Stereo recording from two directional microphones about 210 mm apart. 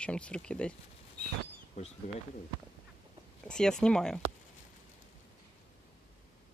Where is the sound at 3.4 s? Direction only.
5° left (ahead or behind).